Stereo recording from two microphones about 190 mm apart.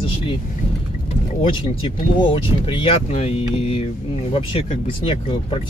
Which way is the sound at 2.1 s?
25° left (ahead or behind).